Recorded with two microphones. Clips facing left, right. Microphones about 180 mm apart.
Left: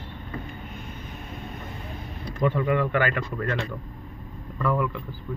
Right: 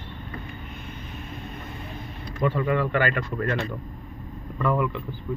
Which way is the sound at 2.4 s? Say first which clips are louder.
Even; 20° left (ahead or behind).